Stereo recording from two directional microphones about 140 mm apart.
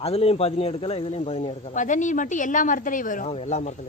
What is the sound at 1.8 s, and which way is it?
A woman's voice, 65° left (ahead or behind).